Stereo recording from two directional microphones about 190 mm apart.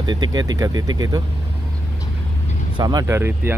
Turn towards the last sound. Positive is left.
turn(degrees=-10)  # may be behind; listen again after turning